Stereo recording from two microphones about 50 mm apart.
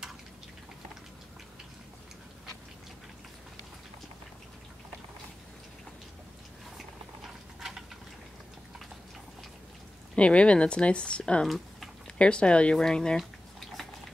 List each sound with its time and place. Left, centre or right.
10.1 s speech: left
11.4 s typing: centre
12.2 s speech: left
13.2 s drip: centre